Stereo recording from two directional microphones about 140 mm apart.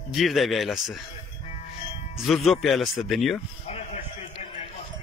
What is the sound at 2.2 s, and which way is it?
Speech, centre (ahead or behind).